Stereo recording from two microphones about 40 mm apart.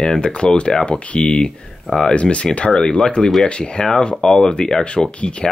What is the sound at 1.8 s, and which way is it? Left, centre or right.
Speech, centre.